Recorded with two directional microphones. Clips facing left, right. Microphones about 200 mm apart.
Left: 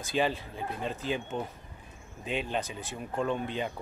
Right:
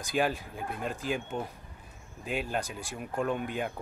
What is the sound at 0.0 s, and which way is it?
Speech, 10° right (ahead or behind).